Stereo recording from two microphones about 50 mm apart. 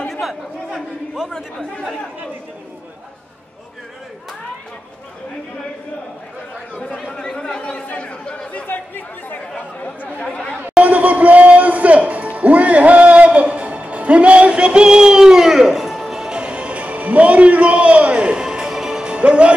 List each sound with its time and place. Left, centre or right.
0.1 s chatter: centre
6.8 s chatter: left
8.6 s chatter: left
10.2 s chatter: centre
10.8 s music: right